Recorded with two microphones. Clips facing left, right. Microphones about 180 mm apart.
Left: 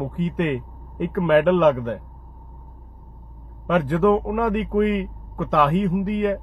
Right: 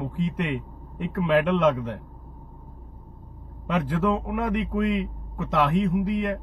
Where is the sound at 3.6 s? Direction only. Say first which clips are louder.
Left 6 dB; 55° left (ahead or behind).